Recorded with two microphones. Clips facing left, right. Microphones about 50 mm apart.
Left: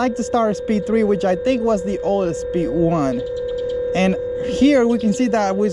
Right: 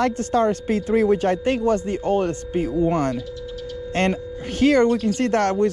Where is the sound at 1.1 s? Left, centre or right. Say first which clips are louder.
Left 2 dB; right.